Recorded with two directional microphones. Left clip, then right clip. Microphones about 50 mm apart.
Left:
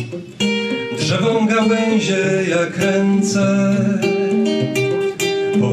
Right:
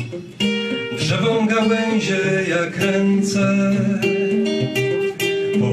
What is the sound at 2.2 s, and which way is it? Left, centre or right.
Music, left.